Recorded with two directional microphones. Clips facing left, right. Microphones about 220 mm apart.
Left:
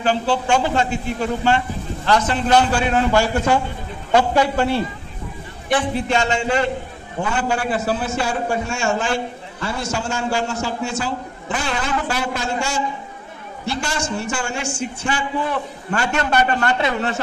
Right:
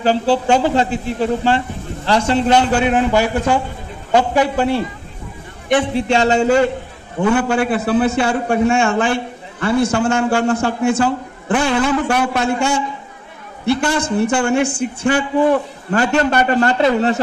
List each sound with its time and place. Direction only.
0.0 s a man's voice: 35° right (ahead or behind); by 4.8 s 15° right (ahead or behind)
5.8 s speech: 30° right (ahead or behind)
7.2 s a man's voice: 60° right (ahead or behind)
15.9 s speech: 35° right (ahead or behind)